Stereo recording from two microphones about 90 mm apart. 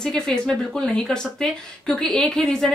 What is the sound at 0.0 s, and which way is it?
Speech, 10° left (ahead or behind).